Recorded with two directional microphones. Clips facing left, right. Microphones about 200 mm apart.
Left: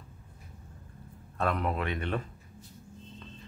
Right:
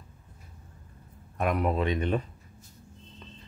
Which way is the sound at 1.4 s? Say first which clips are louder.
Right 4 dB; 15° right (ahead or behind).